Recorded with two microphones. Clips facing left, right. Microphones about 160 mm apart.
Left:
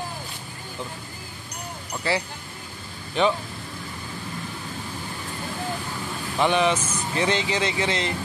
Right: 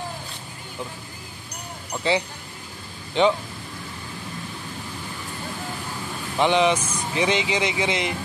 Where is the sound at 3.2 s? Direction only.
20° right (ahead or behind).